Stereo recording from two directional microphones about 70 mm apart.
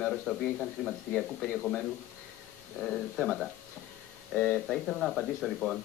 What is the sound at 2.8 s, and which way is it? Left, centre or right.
Speech, centre.